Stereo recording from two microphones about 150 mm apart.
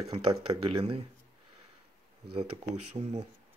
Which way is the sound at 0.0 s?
40° right (ahead or behind).